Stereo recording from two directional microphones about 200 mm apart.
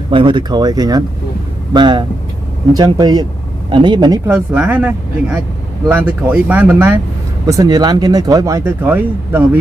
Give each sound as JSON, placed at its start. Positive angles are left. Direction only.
{"t": 0.1, "sound": "speech", "side_deg": -25}